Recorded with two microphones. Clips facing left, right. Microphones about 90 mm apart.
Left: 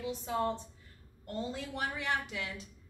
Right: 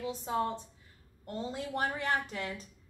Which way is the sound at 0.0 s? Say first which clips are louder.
Right 1 dB; 40° right (ahead or behind).